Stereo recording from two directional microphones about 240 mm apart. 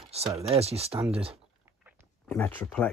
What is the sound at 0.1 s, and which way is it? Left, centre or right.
Speech, right.